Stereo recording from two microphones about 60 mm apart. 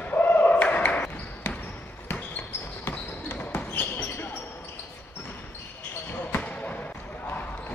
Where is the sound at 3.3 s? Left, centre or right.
Left.